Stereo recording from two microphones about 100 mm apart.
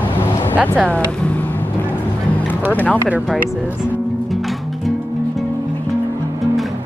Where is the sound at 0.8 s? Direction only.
15° left (ahead or behind).